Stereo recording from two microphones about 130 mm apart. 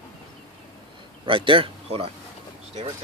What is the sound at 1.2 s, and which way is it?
Speech, 40° right (ahead or behind).